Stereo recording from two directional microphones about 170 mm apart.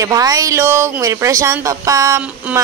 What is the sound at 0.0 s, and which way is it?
Speech, 20° right (ahead or behind).